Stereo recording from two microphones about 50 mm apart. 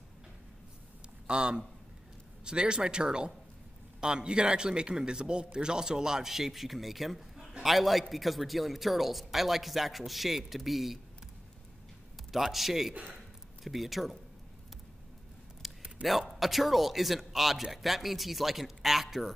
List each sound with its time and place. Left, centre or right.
1.2 s a man's voice: centre
12.3 s a man's voice: centre
15.6 s a sound: centre
16.0 s a man's voice: centre